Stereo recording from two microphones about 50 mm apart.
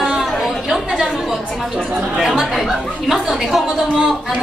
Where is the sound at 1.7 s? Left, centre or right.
Centre.